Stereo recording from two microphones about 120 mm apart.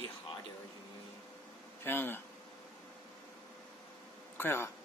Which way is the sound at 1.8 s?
20° left (ahead or behind).